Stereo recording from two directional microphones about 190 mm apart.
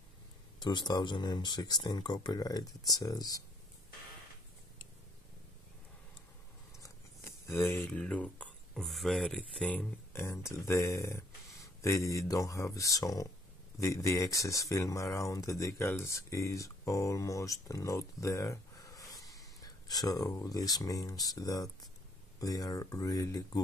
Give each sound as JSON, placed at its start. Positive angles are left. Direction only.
{"t": 0.6, "sound": "speech", "side_deg": 25}
{"t": 6.8, "sound": "speech", "side_deg": 15}